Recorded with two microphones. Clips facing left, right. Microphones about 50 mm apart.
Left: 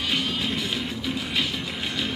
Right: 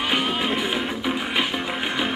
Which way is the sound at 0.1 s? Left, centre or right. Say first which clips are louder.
Right 3 dB; right.